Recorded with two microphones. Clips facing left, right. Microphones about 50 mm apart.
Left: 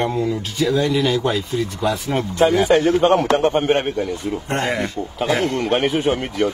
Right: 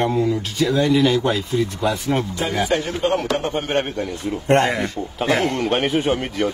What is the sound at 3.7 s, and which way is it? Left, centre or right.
Speech, centre.